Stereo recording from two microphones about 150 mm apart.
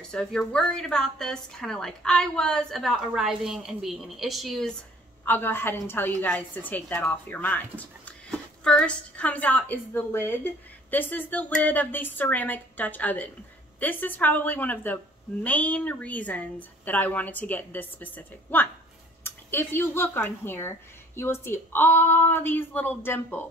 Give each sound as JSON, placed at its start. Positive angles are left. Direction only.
{"t": 0.1, "sound": "a woman's voice", "side_deg": 5}
{"t": 5.2, "sound": "a woman's voice", "side_deg": 15}